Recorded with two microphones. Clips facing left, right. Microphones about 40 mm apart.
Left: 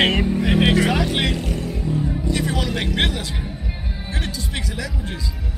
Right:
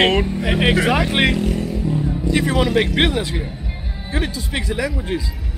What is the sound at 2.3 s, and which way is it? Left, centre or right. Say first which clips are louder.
A man's voice: right 9 dB; centre.